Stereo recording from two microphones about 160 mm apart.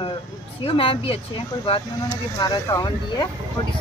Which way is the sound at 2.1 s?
20° left (ahead or behind).